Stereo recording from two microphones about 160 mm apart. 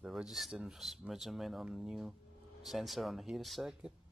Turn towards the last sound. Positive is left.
turn(degrees=0)  # may be behind; listen again after turning